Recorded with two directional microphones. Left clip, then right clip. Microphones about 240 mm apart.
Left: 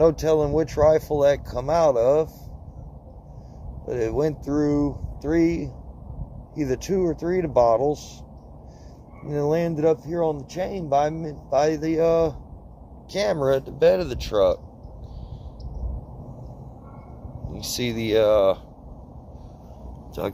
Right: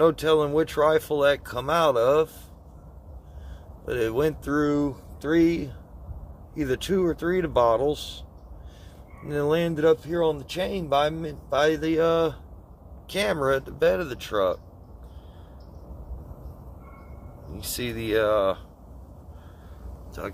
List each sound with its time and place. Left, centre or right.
0.0 s speech: centre
3.8 s speech: centre
9.3 s speech: centre
17.8 s speech: centre
20.2 s speech: left